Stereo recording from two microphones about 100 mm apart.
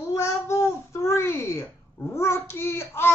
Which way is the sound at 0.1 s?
30° left (ahead or behind).